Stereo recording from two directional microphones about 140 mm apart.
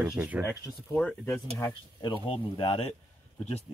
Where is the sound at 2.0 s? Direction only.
40° left (ahead or behind).